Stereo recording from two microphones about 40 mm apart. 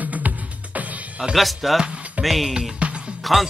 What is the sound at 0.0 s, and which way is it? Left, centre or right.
Music, right.